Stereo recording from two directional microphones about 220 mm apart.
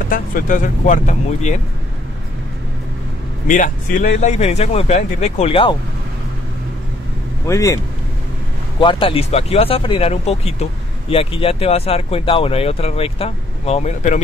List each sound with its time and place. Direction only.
0.1 s speech: 35° left (ahead or behind)
3.4 s speech: 35° left (ahead or behind)
7.4 s speech: 15° left (ahead or behind); by 14.2 s 35° left (ahead or behind)